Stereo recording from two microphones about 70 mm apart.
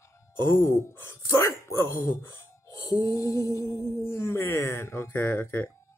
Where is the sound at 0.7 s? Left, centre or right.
Left.